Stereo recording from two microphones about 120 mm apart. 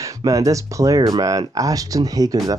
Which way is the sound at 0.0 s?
30° right (ahead or behind).